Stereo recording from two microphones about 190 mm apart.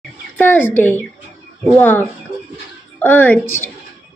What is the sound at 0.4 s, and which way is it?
A woman's voice, 10° left (ahead or behind).